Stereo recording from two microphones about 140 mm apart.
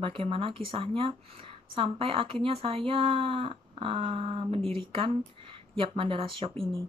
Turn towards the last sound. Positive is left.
turn(degrees=-40)  # may be behind; listen again after turning